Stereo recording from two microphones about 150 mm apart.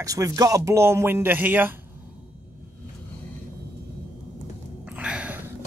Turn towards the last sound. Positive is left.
turn(degrees=-10)  # may be behind; listen again after turning